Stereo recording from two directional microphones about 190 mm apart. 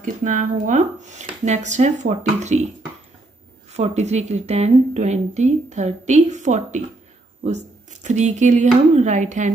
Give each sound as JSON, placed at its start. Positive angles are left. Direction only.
{"t": 0.0, "sound": "a woman's voice", "side_deg": -40}
{"t": 3.7, "sound": "a woman's voice", "side_deg": -35}